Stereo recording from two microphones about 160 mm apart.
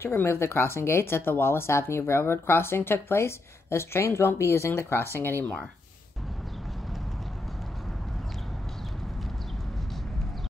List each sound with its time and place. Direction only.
0.0 s speech: 15° left (ahead or behind)